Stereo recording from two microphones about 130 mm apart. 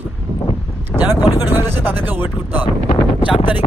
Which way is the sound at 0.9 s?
15° right (ahead or behind).